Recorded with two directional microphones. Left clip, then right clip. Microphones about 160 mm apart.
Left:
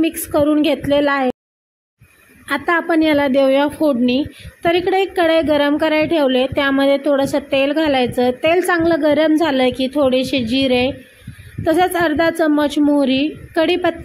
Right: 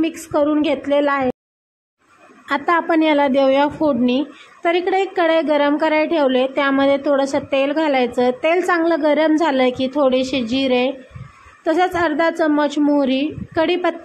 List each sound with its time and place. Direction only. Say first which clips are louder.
0.0 s a woman's voice: left 2 dB; 25° left (ahead or behind)
2.4 s a woman's voice: even; 15° left (ahead or behind)